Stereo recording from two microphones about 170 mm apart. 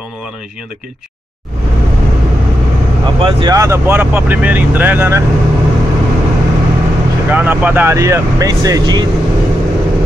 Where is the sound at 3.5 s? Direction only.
20° right (ahead or behind).